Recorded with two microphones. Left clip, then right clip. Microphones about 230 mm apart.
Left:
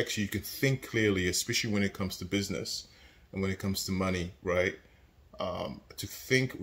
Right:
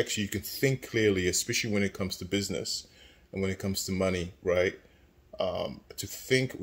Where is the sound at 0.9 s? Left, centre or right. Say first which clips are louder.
Right 3 dB; right.